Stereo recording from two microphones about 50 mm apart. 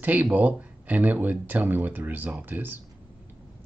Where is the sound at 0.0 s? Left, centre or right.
Right.